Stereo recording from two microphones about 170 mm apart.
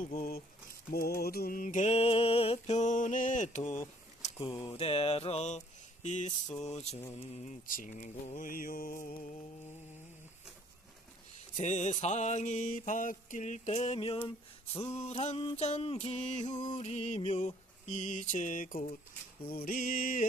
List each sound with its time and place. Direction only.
0.0 s speech: 60° left (ahead or behind)
0.9 s mantra: 65° left (ahead or behind); by 3.8 s 45° left (ahead or behind)
4.4 s mantra: 25° left (ahead or behind)
7.6 s mantra: 50° left (ahead or behind)
11.5 s mantra: 45° left (ahead or behind)